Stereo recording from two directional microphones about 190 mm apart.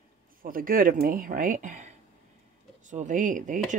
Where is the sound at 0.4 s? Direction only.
45° right (ahead or behind).